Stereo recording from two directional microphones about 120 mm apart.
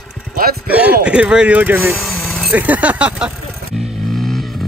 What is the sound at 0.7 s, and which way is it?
Speech, 10° right (ahead or behind).